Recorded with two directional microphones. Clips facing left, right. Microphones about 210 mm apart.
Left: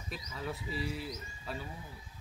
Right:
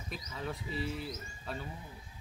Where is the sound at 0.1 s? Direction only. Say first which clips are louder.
Even; centre (ahead or behind).